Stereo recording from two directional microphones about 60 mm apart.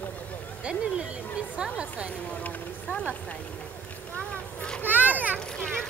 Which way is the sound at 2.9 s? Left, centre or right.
Centre.